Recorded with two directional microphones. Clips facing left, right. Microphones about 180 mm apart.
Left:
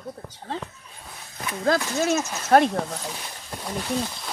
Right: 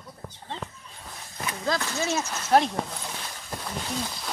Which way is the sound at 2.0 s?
55° left (ahead or behind).